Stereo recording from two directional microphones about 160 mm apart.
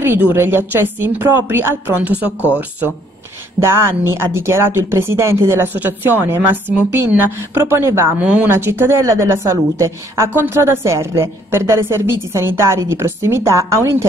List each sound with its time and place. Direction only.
0.0 s speech: 15° right (ahead or behind)
3.6 s speech: 15° right (ahead or behind)